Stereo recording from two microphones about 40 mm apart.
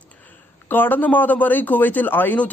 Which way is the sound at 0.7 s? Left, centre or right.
Left.